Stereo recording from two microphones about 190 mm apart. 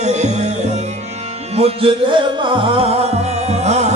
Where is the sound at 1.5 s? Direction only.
30° right (ahead or behind).